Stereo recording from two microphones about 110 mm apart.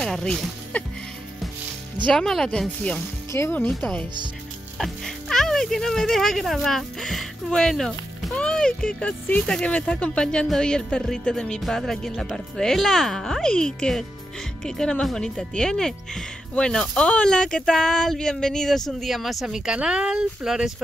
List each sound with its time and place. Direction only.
0.0 s speech: 5° left (ahead or behind)
2.0 s speech: 5° left (ahead or behind)
3.3 s speech: 20° left (ahead or behind)
4.7 s speech: 5° left (ahead or behind)